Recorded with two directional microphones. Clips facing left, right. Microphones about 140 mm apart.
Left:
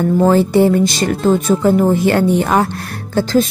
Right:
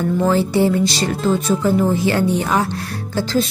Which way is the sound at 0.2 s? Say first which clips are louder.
Left 5 dB; 50° left (ahead or behind).